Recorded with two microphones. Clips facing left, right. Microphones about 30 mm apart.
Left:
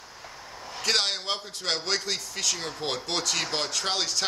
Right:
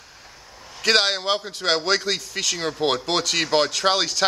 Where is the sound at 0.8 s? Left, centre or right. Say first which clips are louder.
Right 7 dB; right.